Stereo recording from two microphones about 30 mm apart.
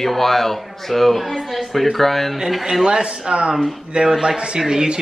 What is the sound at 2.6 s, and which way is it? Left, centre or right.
Speech, centre.